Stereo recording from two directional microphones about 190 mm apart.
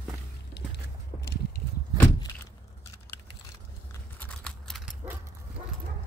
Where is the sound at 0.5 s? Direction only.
60° left (ahead or behind).